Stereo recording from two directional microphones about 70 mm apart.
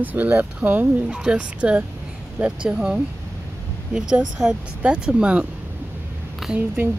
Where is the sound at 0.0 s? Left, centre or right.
Right.